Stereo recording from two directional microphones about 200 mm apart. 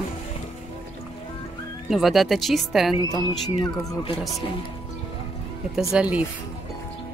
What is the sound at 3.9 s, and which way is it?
Speech, 25° left (ahead or behind).